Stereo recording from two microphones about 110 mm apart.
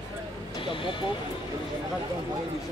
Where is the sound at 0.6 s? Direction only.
50° left (ahead or behind).